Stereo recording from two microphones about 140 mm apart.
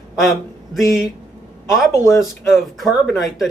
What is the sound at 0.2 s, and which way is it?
Speech, centre (ahead or behind).